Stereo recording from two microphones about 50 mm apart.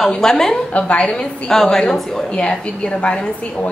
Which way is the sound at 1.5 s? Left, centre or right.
Centre.